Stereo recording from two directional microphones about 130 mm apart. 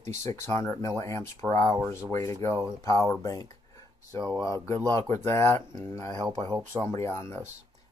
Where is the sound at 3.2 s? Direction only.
25° left (ahead or behind).